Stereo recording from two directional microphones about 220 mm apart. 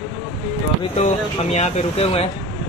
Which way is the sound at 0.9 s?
30° left (ahead or behind).